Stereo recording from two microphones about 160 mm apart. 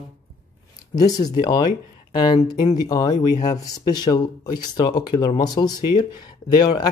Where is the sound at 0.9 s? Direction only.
25° left (ahead or behind).